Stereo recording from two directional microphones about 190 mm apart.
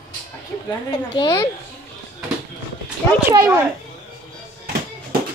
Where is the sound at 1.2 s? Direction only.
20° left (ahead or behind).